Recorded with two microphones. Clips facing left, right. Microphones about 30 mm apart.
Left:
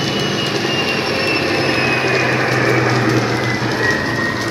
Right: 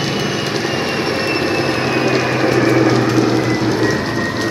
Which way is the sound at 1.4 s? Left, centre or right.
Left.